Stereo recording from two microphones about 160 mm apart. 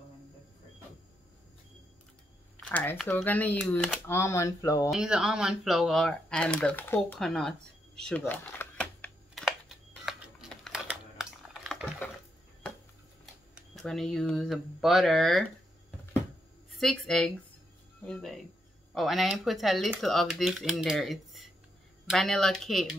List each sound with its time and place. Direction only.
2.5 s a sound: 10° left (ahead or behind)
3.1 s speech: 10° left (ahead or behind)
4.9 s speech: 5° right (ahead or behind); by 9.1 s 10° left (ahead or behind)
9.3 s a sound: centre (ahead or behind)
10.9 s typing: 5° right (ahead or behind)
13.2 s speech: centre (ahead or behind)
16.7 s speech: centre (ahead or behind)